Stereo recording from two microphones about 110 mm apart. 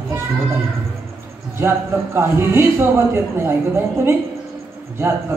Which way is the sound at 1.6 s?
20° right (ahead or behind).